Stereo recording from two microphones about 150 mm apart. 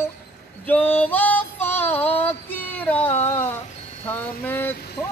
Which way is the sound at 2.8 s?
10° left (ahead or behind).